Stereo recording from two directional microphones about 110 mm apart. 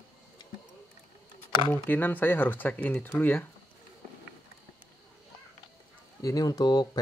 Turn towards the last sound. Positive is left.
turn(degrees=40)  # may be behind; listen again after turning